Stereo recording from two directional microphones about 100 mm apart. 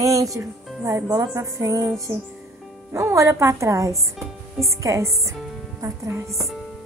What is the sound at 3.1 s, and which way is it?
Speech, 30° right (ahead or behind).